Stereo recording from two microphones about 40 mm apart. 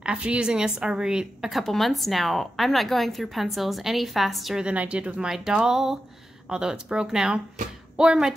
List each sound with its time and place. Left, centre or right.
0.0 s a woman's voice: right
1.5 s a woman's voice: centre
4.6 s speech: right
5.2 s a woman's voice: centre